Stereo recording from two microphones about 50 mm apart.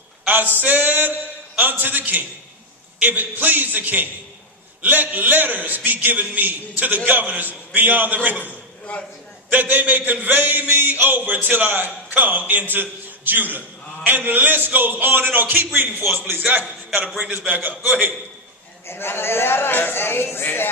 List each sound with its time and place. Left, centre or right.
0.6 s a man's voice: right
8.9 s a man's voice: left
9.5 s a man's voice: right
18.9 s a man's voice: left